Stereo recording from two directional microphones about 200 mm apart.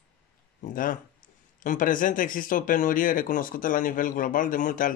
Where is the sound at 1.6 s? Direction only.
40° left (ahead or behind).